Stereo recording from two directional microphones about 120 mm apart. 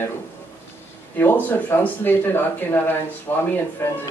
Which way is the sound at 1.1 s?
15° left (ahead or behind).